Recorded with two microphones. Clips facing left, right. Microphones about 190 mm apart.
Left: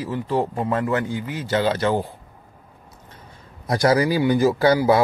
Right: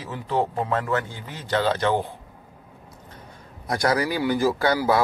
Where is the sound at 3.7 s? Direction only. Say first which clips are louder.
Left 5 dB; 25° left (ahead or behind).